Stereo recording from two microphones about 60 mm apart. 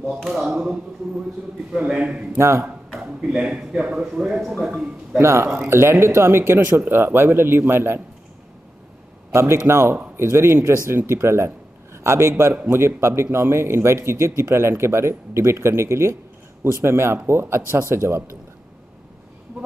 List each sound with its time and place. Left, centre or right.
1.7 s speech: centre
2.3 s a man's voice: right
3.0 s speech: centre
5.2 s a man's voice: right
9.3 s a man's voice: right